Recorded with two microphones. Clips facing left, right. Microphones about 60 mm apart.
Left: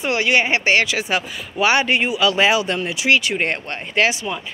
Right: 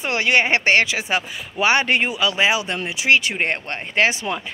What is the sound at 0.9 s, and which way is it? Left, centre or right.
Speech, right.